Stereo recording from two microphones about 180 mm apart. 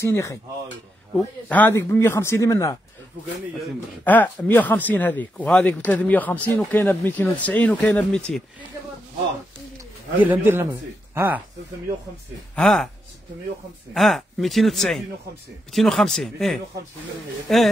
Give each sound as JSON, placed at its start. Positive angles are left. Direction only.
{"t": 0.0, "sound": "speech", "side_deg": 15}
{"t": 4.0, "sound": "speech", "side_deg": 10}
{"t": 10.1, "sound": "a man's voice", "side_deg": -10}
{"t": 12.5, "sound": "speech", "side_deg": 5}
{"t": 13.9, "sound": "speech", "side_deg": 0}